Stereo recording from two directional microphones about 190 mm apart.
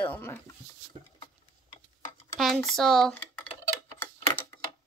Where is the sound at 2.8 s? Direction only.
Centre (ahead or behind).